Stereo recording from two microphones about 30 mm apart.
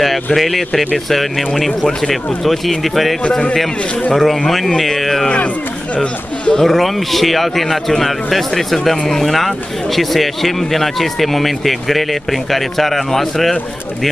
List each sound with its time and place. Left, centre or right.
0.4 s speech: centre
3.3 s a man's voice: left
4.1 s speech: centre
6.5 s speech: centre